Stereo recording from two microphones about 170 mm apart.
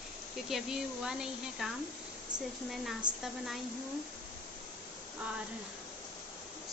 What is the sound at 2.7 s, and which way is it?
Speech, centre (ahead or behind).